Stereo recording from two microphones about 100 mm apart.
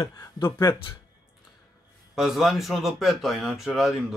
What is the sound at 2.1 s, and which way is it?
A man's voice, 5° right (ahead or behind).